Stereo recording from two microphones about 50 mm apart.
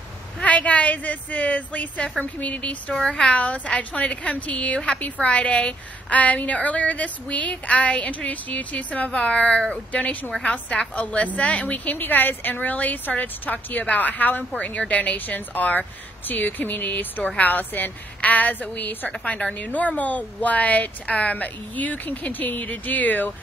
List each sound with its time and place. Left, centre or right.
0.4 s a woman's voice: left
12.0 s a woman's voice: left